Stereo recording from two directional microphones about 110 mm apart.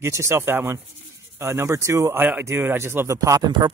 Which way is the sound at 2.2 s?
15° right (ahead or behind).